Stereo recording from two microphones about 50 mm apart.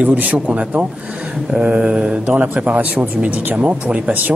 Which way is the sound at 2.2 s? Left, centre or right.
Right.